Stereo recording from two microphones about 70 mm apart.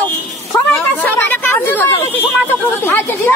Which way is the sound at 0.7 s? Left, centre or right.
Left.